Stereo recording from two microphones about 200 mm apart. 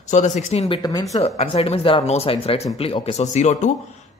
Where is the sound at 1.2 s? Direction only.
35° left (ahead or behind).